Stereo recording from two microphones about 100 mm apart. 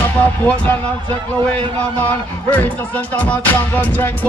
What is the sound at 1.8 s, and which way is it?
Music, 15° left (ahead or behind).